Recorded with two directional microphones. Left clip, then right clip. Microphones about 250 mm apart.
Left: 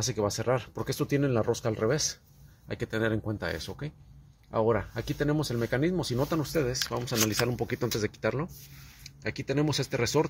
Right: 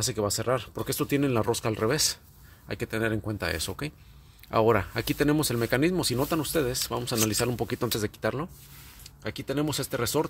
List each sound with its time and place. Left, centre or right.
0.0 s speech: centre